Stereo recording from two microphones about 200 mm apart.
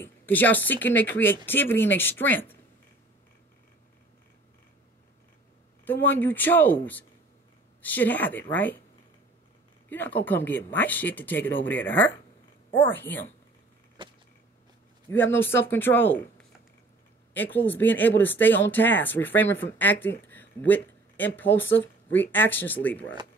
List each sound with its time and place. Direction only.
0.0 s speech: 10° left (ahead or behind)
5.9 s speech: 10° left (ahead or behind)
9.8 s speech: 10° left (ahead or behind)
14.0 s a sound: 25° right (ahead or behind)
15.3 s speech: 10° left (ahead or behind)